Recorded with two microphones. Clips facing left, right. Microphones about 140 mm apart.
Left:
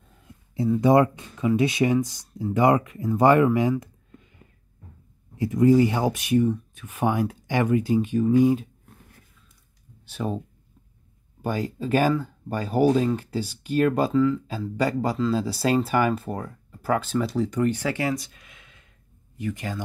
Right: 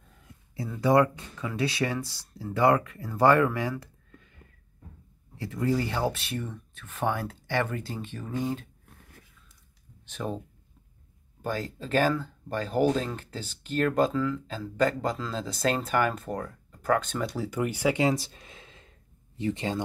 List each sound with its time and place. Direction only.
0.6 s speech: 20° left (ahead or behind)
5.4 s speech: 15° left (ahead or behind)
10.0 s speech: 5° left (ahead or behind)
11.4 s speech: 15° left (ahead or behind); by 19.8 s 25° right (ahead or behind)